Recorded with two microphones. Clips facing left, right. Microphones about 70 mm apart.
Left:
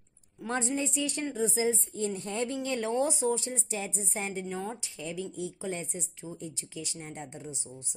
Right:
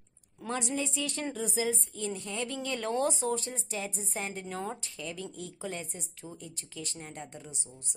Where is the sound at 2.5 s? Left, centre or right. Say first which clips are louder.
Left 2 dB; left.